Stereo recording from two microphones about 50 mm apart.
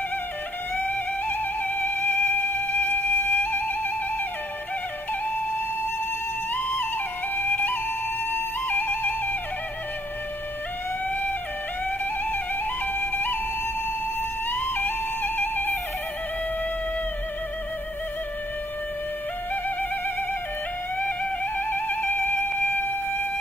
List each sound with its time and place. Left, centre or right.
0.7 s music: left
6.5 s music: left
11.1 s music: left
12.8 s music: left
14.5 s music: left
19.5 s music: left
21.5 s music: left